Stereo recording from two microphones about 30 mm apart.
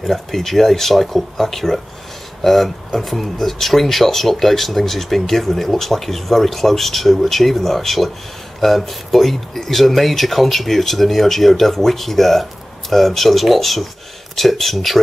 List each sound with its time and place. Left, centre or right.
0.0 s speech: centre